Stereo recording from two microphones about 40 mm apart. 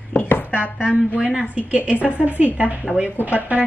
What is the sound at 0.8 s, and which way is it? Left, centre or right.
A woman's voice, right.